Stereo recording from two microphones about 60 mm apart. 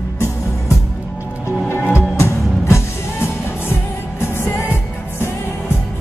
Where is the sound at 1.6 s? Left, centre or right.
Left.